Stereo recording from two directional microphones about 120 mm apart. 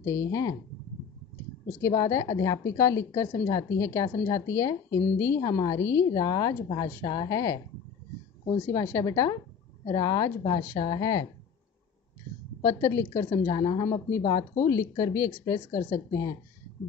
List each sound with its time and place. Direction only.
0.0 s a woman's voice: 25° left (ahead or behind)
1.8 s a woman's voice: 25° left (ahead or behind)
12.6 s a woman's voice: 25° left (ahead or behind)